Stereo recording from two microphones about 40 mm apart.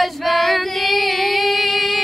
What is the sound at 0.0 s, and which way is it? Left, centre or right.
Female singing, centre.